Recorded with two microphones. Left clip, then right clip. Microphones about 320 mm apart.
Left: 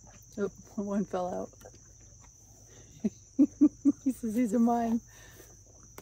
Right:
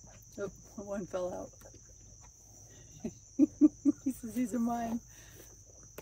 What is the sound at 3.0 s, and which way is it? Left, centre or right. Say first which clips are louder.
Cricket: left 3 dB; left.